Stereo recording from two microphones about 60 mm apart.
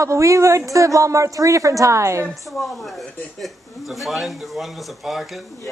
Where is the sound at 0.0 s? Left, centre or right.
Right.